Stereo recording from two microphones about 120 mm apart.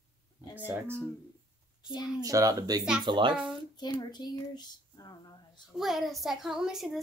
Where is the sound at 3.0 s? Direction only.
40° right (ahead or behind).